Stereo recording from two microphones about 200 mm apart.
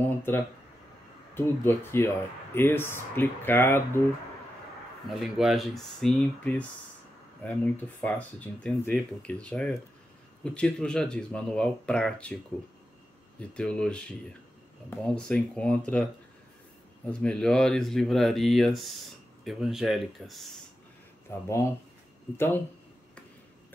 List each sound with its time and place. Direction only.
0.0 s speech: 10° left (ahead or behind)
5.2 s speech: centre (ahead or behind)
13.5 s speech: 5° left (ahead or behind)
21.5 s speech: 15° left (ahead or behind)